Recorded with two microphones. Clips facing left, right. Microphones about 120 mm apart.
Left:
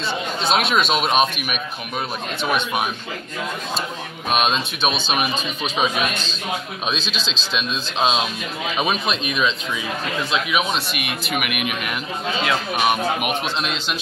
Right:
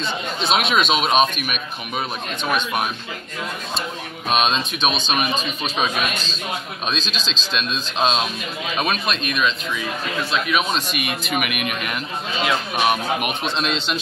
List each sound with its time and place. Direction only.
0.4 s speech: centre (ahead or behind)
2.4 s speech: 5° left (ahead or behind)
4.3 s speech: 5° left (ahead or behind)
6.9 s speech: 15° left (ahead or behind)